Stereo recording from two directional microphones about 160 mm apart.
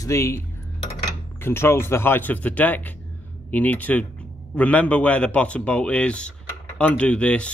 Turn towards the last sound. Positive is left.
turn(degrees=5)  # may be behind; listen again after turning